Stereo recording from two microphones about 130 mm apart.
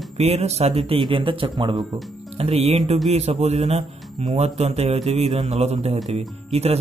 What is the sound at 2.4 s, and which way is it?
Speech, 50° right (ahead or behind).